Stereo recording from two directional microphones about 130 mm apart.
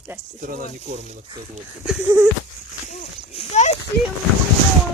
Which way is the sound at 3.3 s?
55° left (ahead or behind).